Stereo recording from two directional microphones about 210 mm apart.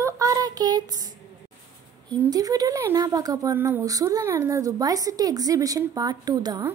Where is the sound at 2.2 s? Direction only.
15° right (ahead or behind).